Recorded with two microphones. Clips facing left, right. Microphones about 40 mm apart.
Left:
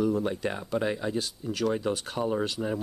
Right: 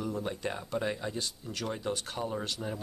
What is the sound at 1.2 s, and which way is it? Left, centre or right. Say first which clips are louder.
Speech: left 7 dB; centre.